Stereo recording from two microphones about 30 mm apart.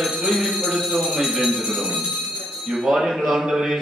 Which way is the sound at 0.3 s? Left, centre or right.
Centre.